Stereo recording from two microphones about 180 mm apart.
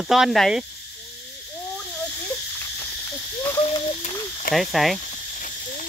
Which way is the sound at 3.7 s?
40° left (ahead or behind).